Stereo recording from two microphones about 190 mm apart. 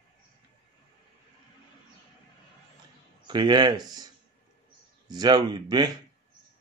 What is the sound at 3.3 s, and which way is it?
Speech, 25° right (ahead or behind).